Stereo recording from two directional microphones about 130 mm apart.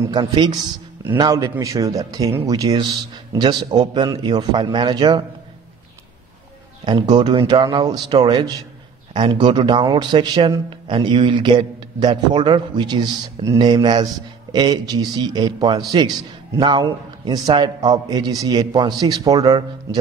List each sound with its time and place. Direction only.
0.1 s a man's voice: 35° right (ahead or behind)
1.6 s a man's voice: 25° right (ahead or behind)
6.8 s a man's voice: 35° right (ahead or behind)